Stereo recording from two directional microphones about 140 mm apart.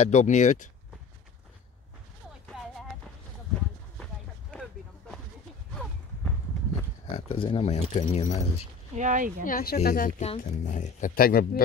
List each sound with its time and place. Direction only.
0.0 s speech: 55° left (ahead or behind)
4.0 s a sound: 5° left (ahead or behind)
7.1 s speech: 40° left (ahead or behind)
8.9 s speech: 65° right (ahead or behind)
9.4 s speech: 85° left
10.2 s speech: 55° left (ahead or behind); by 11.6 s 90° left